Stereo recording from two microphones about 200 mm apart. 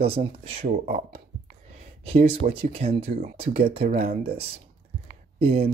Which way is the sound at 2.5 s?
30° right (ahead or behind).